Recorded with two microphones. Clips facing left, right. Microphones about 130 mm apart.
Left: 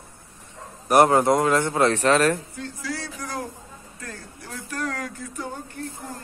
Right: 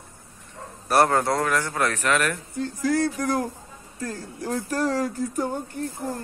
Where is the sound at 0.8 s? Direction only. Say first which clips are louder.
Left 3 dB; 20° left (ahead or behind); by 2.4 s 35° left (ahead or behind).